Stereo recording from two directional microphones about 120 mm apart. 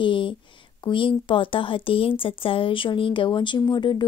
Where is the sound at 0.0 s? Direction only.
45° left (ahead or behind).